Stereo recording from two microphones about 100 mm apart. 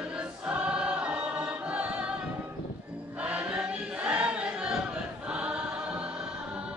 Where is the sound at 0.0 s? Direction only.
10° right (ahead or behind).